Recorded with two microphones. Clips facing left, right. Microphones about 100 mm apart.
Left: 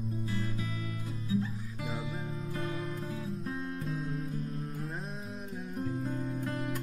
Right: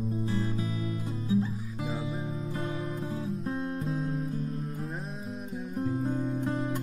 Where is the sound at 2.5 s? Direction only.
25° right (ahead or behind).